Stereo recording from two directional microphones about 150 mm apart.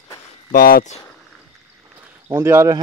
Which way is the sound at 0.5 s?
70° left (ahead or behind).